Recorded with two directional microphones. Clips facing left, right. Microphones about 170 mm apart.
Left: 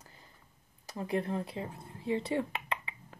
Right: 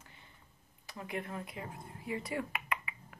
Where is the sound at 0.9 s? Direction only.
35° left (ahead or behind).